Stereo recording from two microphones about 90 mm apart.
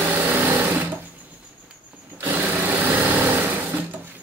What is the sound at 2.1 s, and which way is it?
Sewing machine, 25° right (ahead or behind).